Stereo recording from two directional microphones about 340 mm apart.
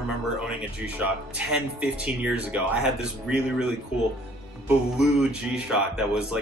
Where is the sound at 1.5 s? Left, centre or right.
Centre.